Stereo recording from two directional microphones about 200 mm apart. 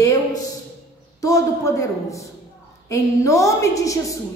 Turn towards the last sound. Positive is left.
turn(degrees=15)  # may be behind; listen again after turning